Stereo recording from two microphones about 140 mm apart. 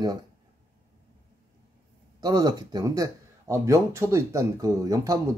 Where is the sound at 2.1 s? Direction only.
25° right (ahead or behind).